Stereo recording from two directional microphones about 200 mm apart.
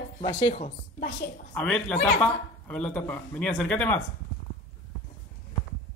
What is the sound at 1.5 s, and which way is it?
Speech, 5° left (ahead or behind).